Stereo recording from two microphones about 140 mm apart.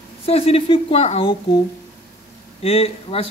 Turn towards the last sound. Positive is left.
turn(degrees=45)  # may be behind; listen again after turning